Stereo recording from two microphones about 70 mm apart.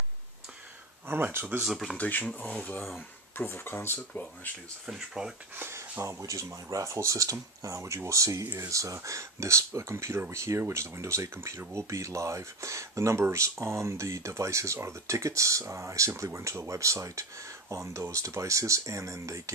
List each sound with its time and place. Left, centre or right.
1.0 s speech: right
1.6 s speech: centre
2.0 s speech: left
5.2 s speech: centre
5.6 s speech: right